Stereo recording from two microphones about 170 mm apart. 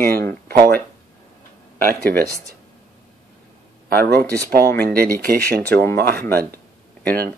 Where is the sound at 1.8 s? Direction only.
65° right (ahead or behind).